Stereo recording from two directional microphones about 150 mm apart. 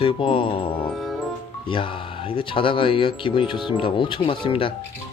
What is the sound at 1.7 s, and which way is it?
Speech, 35° left (ahead or behind).